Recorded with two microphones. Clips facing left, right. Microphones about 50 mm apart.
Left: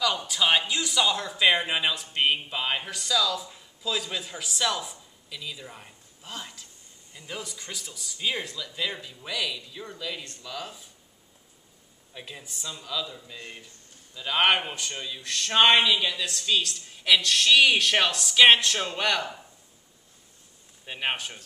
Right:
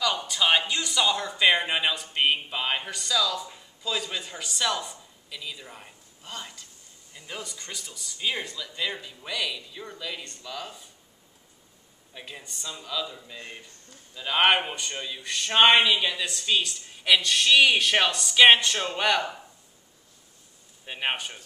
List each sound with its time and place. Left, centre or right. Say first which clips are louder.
0.0 s speech: even; centre
12.1 s speech: even; centre
20.8 s speech: even; centre